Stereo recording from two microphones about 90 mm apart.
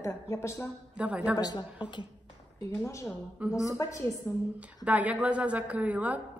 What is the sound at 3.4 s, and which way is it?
Speech, 15° right (ahead or behind).